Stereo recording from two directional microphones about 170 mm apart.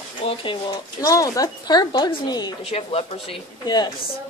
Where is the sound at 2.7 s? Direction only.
35° left (ahead or behind).